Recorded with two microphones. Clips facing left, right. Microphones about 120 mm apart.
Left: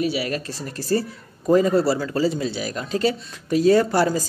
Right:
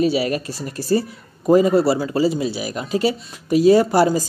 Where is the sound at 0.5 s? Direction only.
10° right (ahead or behind).